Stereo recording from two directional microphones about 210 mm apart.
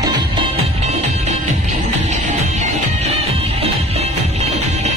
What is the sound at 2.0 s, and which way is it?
Music, 35° right (ahead or behind).